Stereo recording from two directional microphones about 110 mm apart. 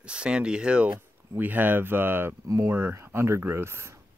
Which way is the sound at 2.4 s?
30° right (ahead or behind).